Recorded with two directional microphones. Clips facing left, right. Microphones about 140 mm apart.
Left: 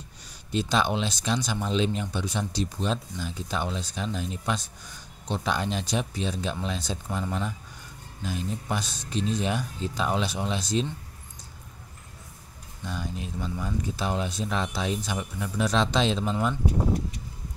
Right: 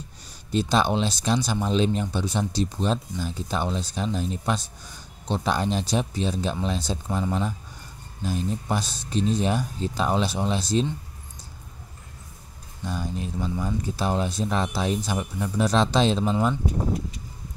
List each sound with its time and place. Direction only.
0.5 s speech: 35° right (ahead or behind)
12.8 s speech: 40° right (ahead or behind)